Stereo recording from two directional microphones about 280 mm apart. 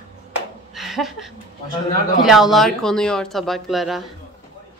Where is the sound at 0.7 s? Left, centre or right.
Centre.